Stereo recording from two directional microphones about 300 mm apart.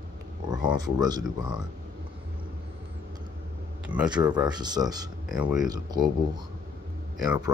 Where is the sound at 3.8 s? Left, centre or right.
Centre.